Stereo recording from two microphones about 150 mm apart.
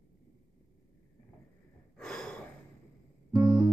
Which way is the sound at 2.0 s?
5° left (ahead or behind).